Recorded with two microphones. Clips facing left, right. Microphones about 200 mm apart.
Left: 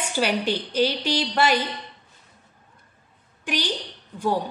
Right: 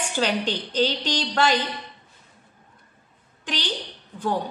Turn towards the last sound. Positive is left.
turn(degrees=10)  # may be behind; listen again after turning